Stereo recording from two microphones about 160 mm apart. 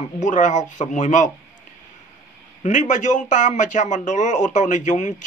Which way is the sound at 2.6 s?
50° left (ahead or behind).